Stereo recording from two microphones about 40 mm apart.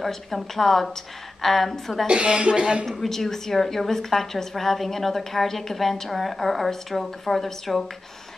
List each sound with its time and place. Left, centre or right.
0.0 s a woman's voice: centre
2.0 s speech: right
2.8 s a woman's voice: centre